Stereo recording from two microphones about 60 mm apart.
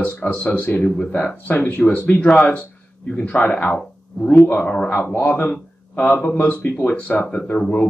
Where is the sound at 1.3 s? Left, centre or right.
Left.